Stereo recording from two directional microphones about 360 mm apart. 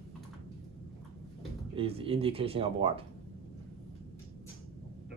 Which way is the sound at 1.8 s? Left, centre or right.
Centre.